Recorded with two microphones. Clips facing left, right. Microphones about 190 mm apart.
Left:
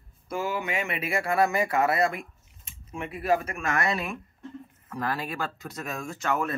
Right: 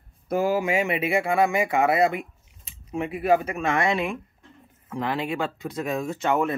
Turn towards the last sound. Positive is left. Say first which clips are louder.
# right 5 dB
turn(degrees=-25)  # may be behind; listen again after turning